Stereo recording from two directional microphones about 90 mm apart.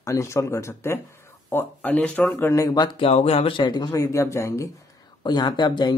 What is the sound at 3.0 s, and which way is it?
Speech, 80° left.